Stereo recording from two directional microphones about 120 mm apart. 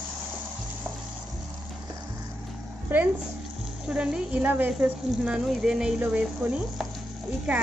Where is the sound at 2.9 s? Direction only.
15° right (ahead or behind).